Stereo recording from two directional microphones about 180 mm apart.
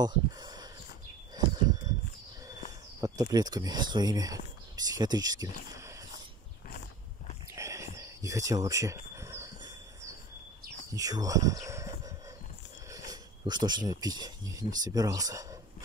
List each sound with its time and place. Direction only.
0.0 s speech: 20° right (ahead or behind)
3.0 s speech: 20° right (ahead or behind)
7.5 s cricket: 15° right (ahead or behind)
11.0 s speech: 20° right (ahead or behind)